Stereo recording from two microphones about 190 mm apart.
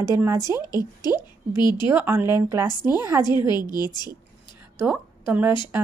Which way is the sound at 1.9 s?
10° right (ahead or behind).